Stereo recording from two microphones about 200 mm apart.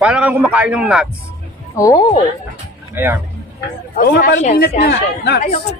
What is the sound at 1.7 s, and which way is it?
Speech, 15° left (ahead or behind).